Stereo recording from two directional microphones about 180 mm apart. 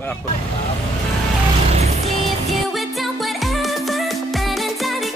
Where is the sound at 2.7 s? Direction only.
Centre (ahead or behind).